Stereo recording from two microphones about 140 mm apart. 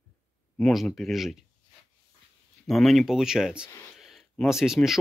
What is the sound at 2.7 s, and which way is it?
Speech, centre (ahead or behind).